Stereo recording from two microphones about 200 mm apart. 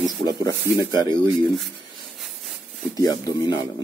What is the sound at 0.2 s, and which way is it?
Speech, 15° left (ahead or behind).